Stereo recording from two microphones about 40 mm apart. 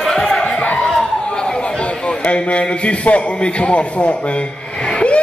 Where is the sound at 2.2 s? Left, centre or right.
Left.